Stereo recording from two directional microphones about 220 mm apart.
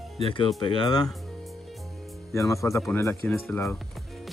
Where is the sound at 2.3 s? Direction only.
15° left (ahead or behind).